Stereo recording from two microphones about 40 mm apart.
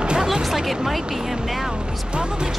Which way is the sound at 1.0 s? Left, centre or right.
Centre.